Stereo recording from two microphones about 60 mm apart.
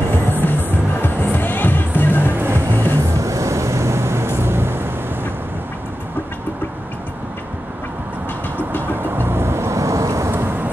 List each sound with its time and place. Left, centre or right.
0.3 s music: left
2.3 s music: right
2.7 s music: left
3.0 s vehicle: right
8.9 s vehicle: right
10.3 s vehicle: right